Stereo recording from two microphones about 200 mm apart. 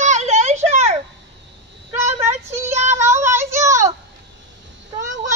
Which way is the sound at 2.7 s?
35° right (ahead or behind).